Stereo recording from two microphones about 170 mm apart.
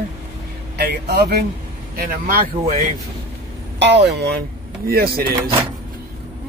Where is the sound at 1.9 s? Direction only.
60° right (ahead or behind).